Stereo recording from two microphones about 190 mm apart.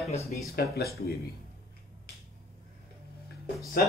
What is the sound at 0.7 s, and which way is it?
Speech, 55° left (ahead or behind).